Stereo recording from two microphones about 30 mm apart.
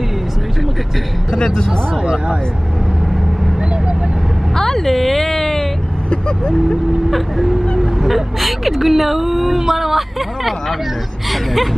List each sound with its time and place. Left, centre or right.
1.3 s speech: left
4.6 s a sound: centre
6.0 s vehicle: left
7.1 s speech: centre